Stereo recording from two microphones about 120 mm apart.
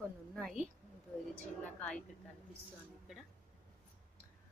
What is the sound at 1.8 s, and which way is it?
Speech, 10° left (ahead or behind).